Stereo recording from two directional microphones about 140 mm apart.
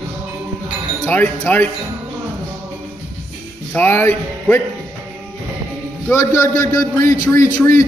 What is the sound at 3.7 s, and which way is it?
Speech, 15° left (ahead or behind).